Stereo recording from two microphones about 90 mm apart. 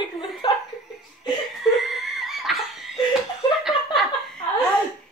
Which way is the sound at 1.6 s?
Centre (ahead or behind).